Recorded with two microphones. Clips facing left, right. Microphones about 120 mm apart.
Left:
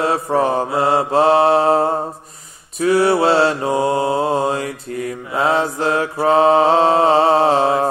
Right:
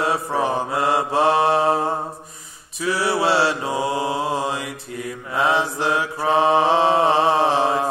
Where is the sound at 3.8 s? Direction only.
30° left (ahead or behind).